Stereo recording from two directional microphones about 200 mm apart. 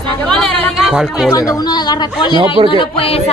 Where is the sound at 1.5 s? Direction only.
20° left (ahead or behind).